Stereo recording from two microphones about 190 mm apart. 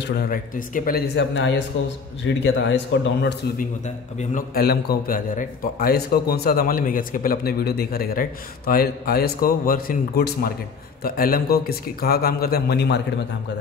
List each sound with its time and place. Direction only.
0.0 s a man's voice: 55° left (ahead or behind)
3.5 s a man's voice: 40° left (ahead or behind); by 13.0 s 60° left (ahead or behind)